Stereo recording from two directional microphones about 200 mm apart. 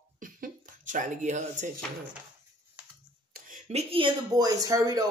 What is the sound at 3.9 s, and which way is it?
Speech, 20° right (ahead or behind).